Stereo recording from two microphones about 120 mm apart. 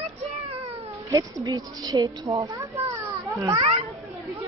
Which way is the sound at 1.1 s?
35° right (ahead or behind).